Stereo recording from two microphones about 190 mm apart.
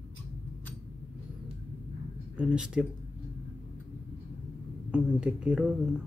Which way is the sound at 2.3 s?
5° right (ahead or behind).